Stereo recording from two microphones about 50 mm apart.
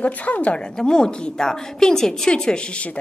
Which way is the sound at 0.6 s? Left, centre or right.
Centre.